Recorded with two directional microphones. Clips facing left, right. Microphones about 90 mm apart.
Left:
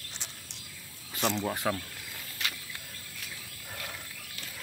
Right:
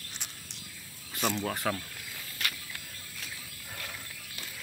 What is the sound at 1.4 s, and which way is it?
Speech, 15° left (ahead or behind).